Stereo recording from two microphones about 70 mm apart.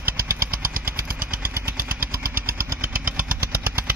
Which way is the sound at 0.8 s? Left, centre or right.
Right.